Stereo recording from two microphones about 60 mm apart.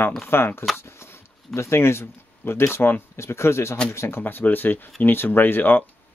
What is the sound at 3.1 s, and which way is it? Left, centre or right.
Speech, left.